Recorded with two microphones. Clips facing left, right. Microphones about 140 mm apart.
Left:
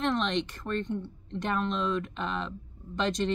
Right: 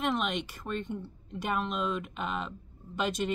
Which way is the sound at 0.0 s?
5° right (ahead or behind).